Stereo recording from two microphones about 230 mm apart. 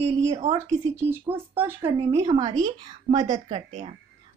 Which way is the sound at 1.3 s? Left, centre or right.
Centre.